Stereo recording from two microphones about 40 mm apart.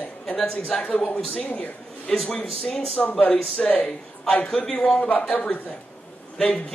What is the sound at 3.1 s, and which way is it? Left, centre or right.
Speech, left.